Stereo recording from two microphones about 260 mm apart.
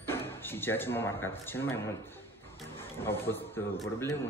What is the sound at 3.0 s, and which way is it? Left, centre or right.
A man's voice, centre.